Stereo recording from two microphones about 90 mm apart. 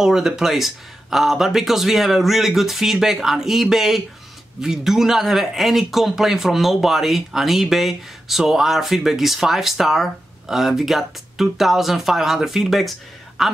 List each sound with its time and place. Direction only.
0.0 s speech: 5° right (ahead or behind)